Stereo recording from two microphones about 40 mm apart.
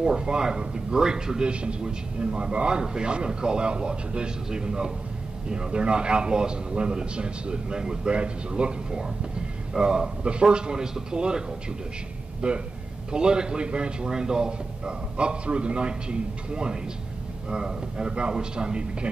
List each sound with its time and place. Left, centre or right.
0.0 s a man's voice: centre